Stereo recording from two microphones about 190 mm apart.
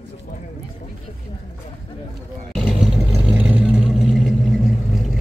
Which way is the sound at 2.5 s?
Centre (ahead or behind).